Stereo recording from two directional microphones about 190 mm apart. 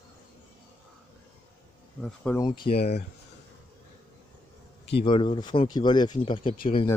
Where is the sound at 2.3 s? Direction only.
20° left (ahead or behind).